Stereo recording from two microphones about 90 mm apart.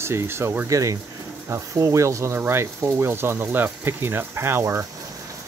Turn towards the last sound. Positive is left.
turn(degrees=-25)  # may be behind; listen again after turning